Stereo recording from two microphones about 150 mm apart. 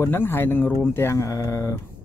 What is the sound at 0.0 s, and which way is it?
Speech, 15° left (ahead or behind).